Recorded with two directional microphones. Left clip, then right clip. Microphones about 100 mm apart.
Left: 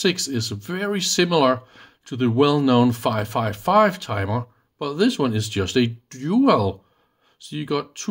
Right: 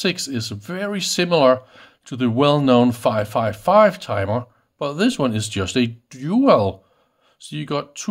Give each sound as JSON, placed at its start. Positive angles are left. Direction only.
{"t": 0.0, "sound": "speech", "side_deg": -20}